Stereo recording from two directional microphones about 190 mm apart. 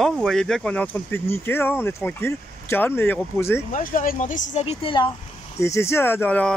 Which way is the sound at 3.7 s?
45° left (ahead or behind).